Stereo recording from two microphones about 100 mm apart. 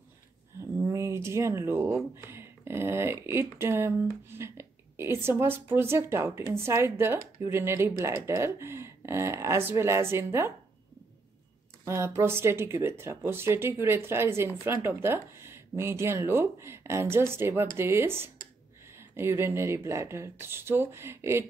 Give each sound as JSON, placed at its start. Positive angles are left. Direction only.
{"t": 0.6, "sound": "a sound", "side_deg": -30}
{"t": 2.1, "sound": "speech", "side_deg": -25}
{"t": 11.8, "sound": "speech", "side_deg": -30}